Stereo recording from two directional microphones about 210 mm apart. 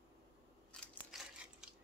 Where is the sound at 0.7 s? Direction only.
Centre (ahead or behind).